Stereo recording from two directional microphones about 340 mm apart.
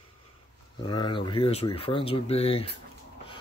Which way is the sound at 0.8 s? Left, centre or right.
Centre.